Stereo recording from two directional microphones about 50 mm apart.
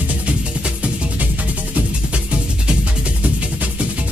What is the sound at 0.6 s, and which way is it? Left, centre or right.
Music, right.